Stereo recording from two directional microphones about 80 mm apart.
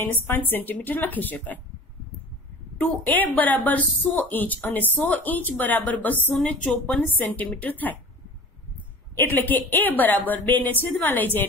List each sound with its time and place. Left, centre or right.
0.0 s a woman's voice: left
2.8 s a woman's voice: left
9.1 s a woman's voice: left